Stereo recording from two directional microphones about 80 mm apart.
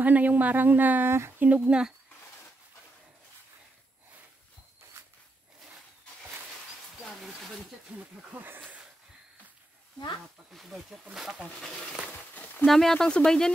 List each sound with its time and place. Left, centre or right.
0.0 s speech: right
1.4 s speech: centre
7.1 s a sound: centre
8.3 s speech: right
10.5 s speech: centre
12.1 s a sound: centre
12.6 s speech: centre